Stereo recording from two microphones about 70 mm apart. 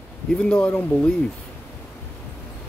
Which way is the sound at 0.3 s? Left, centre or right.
Centre.